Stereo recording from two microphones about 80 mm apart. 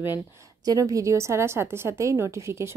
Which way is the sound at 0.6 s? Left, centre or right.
Right.